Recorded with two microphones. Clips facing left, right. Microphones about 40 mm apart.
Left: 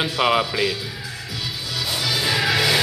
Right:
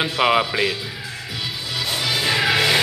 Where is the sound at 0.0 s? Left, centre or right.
Centre.